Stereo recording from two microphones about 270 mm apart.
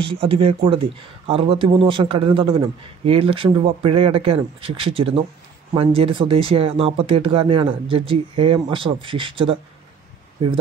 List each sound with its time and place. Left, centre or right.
0.1 s speech: centre